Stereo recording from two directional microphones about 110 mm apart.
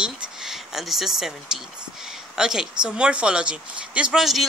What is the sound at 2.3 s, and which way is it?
Speech, 5° right (ahead or behind).